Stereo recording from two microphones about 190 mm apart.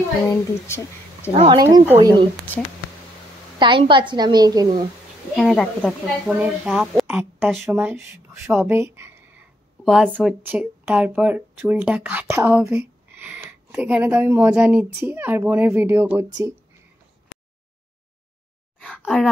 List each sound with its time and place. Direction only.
0.3 s speech: 15° left (ahead or behind)
1.3 s speech: 35° right (ahead or behind)
1.6 s a woman's voice: 20° right (ahead or behind)
3.5 s a woman's voice: 25° right (ahead or behind)
5.3 s speech: centre (ahead or behind); by 9.1 s 15° right (ahead or behind)
9.8 s speech: centre (ahead or behind)
18.8 s a sound: 5° left (ahead or behind)